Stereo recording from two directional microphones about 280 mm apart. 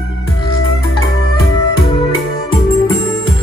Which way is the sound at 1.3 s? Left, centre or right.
Centre.